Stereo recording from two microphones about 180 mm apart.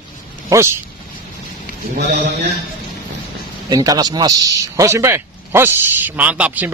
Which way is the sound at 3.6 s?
20° right (ahead or behind).